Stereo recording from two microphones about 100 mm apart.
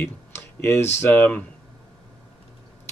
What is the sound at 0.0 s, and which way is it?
Speech, 25° left (ahead or behind).